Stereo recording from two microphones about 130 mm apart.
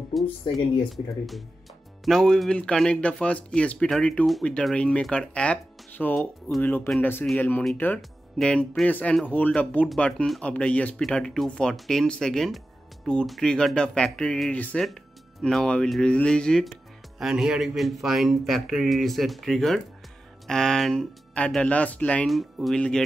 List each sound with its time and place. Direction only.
0.1 s speech: centre (ahead or behind)